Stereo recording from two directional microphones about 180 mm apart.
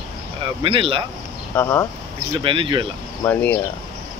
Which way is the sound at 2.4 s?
30° right (ahead or behind).